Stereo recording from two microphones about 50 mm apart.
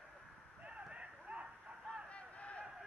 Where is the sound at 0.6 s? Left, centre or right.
Right.